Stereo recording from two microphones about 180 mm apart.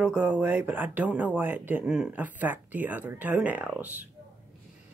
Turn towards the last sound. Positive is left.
turn(degrees=-10)  # may be behind; listen again after turning